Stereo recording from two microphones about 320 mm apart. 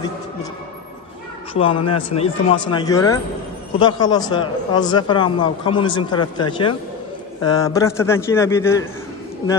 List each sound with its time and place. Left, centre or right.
1.5 s a man's voice: centre
7.4 s a man's voice: centre